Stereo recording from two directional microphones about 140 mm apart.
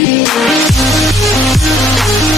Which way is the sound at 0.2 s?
Centre (ahead or behind).